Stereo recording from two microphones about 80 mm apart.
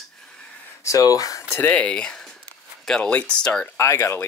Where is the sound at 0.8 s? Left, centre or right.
Left.